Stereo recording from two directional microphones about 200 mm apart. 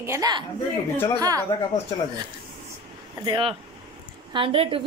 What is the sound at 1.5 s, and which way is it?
Speech, 20° left (ahead or behind).